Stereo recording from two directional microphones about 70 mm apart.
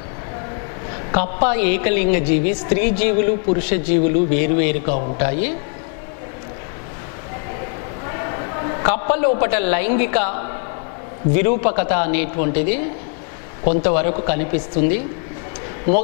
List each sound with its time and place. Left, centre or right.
1.1 s a woman's voice: centre
8.8 s a woman's voice: centre